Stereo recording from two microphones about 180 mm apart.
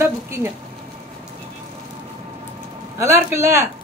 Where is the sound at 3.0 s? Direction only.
15° right (ahead or behind).